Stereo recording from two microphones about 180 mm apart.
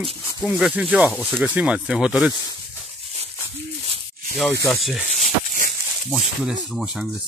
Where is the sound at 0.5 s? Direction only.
5° right (ahead or behind).